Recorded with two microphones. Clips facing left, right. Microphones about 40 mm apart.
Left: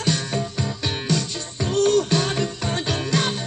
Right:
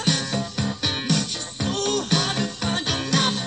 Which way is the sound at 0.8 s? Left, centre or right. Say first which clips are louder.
Even; right.